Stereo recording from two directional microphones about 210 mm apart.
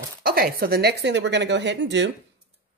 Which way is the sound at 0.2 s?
45° right (ahead or behind).